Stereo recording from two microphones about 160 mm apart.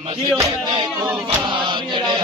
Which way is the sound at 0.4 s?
25° right (ahead or behind).